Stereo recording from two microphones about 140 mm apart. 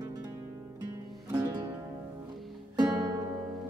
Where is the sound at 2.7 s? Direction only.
30° right (ahead or behind).